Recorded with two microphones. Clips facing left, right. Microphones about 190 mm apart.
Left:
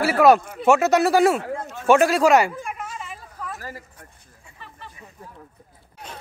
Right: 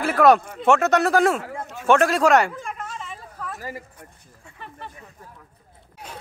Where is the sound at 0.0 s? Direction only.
5° left (ahead or behind).